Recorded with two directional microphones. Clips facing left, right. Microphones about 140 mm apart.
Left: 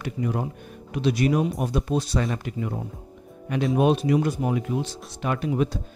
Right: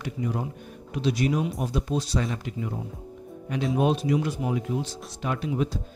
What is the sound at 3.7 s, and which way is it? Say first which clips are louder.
Speech: left 3 dB; 65° left (ahead or behind).